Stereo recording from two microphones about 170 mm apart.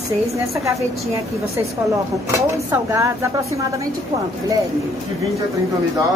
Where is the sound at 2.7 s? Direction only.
15° right (ahead or behind).